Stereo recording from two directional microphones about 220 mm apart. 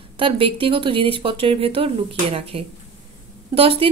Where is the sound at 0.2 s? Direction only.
25° right (ahead or behind).